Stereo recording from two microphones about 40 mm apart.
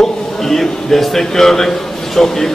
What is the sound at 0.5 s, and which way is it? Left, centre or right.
Speech, centre.